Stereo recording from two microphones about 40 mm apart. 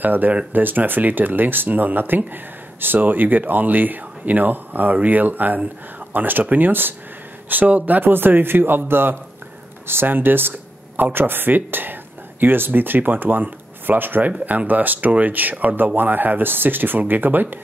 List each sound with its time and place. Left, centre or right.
0.0 s speech: right
7.4 s speech: right
8.1 s speech: right